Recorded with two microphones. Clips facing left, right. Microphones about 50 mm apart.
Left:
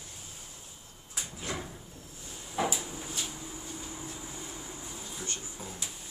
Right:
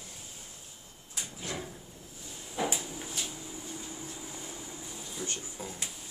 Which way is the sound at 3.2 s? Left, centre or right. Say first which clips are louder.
Even; centre.